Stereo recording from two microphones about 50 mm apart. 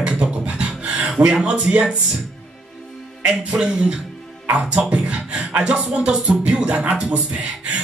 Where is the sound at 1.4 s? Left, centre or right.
Centre.